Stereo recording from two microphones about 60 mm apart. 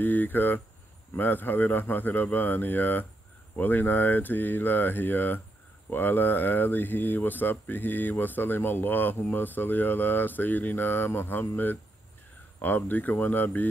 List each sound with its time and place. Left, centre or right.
0.0 s speech: left